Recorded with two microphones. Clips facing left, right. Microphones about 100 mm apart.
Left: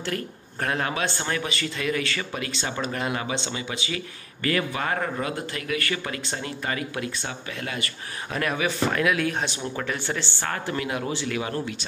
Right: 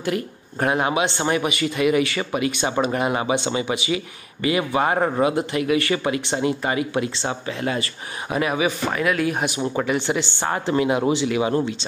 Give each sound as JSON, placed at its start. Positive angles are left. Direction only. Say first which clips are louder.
{"t": 0.0, "sound": "speech", "louder": "right 6 dB", "side_deg": -15}
{"t": 8.3, "sound": "speech", "louder": "right 5 dB", "side_deg": -10}